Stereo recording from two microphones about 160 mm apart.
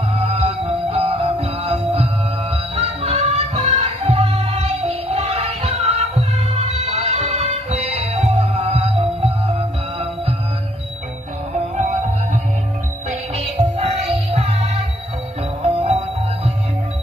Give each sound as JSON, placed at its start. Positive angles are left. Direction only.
{"t": 0.1, "sound": "music", "side_deg": -40}
{"t": 11.7, "sound": "music", "side_deg": -50}
{"t": 13.4, "sound": "music", "side_deg": -40}